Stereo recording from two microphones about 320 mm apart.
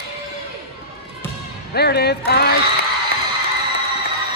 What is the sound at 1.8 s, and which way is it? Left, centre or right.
Speech, left.